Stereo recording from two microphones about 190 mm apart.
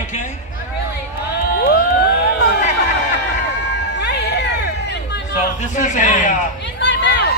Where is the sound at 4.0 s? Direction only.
65° left (ahead or behind).